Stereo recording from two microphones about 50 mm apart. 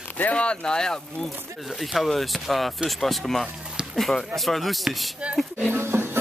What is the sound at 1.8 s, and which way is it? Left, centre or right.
Speech, centre.